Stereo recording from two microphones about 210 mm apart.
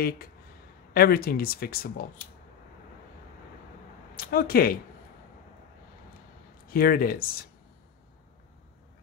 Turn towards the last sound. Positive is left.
turn(degrees=45)  # may be behind; listen again after turning